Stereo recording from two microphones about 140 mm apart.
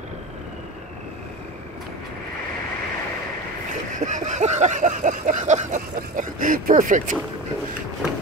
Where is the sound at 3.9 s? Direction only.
65° right (ahead or behind).